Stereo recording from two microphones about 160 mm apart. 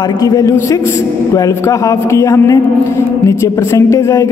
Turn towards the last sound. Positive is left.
turn(degrees=20)  # may be behind; listen again after turning